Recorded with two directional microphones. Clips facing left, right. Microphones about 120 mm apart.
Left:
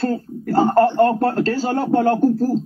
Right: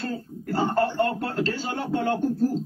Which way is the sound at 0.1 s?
40° left (ahead or behind).